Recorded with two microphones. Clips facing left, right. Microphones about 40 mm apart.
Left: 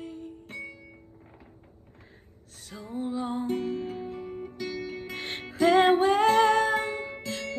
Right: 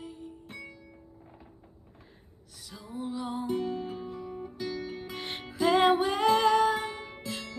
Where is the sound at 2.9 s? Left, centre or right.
Left.